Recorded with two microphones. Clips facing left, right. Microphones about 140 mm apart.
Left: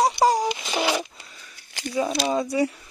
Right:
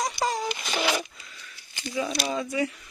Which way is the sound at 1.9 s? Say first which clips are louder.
Left 5 dB; 35° left (ahead or behind).